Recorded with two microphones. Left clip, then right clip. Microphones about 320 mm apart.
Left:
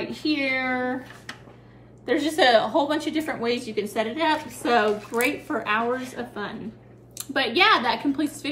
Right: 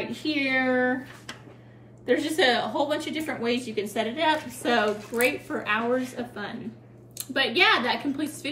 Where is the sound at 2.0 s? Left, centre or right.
Centre.